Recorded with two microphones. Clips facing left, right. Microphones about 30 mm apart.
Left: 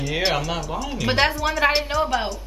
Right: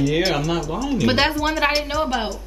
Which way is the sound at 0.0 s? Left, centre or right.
Centre.